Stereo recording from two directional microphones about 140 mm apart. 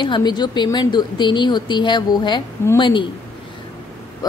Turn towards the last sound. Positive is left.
turn(degrees=35)  # may be behind; listen again after turning